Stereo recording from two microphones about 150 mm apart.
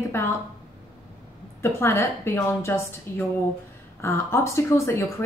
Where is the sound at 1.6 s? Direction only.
15° left (ahead or behind).